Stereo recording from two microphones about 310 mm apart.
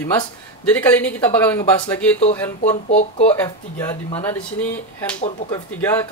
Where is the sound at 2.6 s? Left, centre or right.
Left.